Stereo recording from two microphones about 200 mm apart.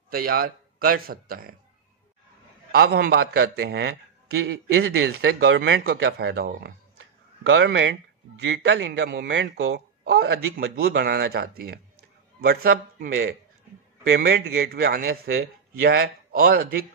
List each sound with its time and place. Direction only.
0.1 s a man's voice: 45° right (ahead or behind)
2.7 s speech: 50° right (ahead or behind)
7.4 s speech: 70° right (ahead or behind); by 10.1 s 85° right
10.1 s speech: 55° right (ahead or behind)